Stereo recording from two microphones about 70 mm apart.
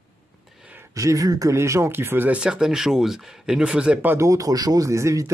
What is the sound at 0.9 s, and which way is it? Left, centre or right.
Speech, right.